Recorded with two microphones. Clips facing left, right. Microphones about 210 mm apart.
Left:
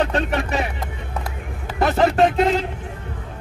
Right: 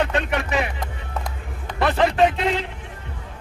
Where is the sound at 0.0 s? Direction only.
40° left (ahead or behind).